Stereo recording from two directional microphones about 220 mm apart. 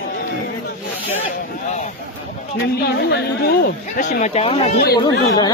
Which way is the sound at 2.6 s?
45° left (ahead or behind).